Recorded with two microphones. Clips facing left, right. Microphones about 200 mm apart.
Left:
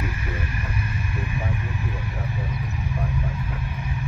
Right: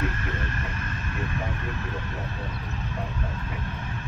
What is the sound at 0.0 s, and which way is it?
Vehicle, 10° left (ahead or behind).